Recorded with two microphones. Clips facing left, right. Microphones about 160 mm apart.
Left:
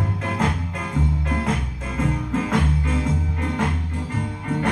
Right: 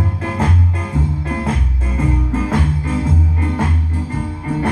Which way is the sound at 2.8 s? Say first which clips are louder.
Right 4 dB; 35° right (ahead or behind).